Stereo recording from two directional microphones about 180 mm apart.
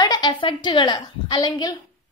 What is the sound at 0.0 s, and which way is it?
A woman's voice, 25° left (ahead or behind).